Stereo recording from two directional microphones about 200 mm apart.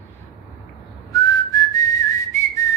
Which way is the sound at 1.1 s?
20° left (ahead or behind).